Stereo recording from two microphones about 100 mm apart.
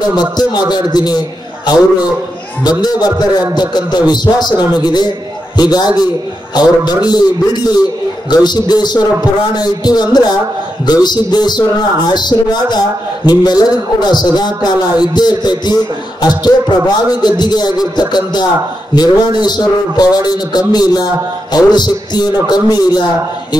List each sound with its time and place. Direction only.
0.1 s a man's voice: 45° left (ahead or behind)
2.8 s a man's voice: 45° left (ahead or behind)